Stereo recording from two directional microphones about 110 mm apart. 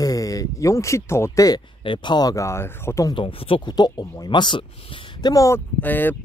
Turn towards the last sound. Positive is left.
turn(degrees=15)  # may be behind; listen again after turning